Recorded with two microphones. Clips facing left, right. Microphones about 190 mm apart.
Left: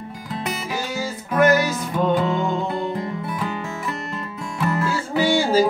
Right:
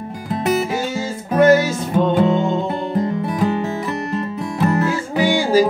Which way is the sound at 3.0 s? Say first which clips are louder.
Right 7 dB; 40° right (ahead or behind).